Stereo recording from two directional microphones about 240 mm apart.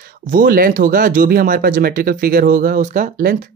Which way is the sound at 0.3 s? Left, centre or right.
Right.